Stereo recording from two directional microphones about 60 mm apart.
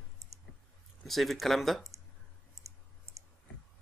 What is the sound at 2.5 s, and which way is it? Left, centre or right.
Clicking, right.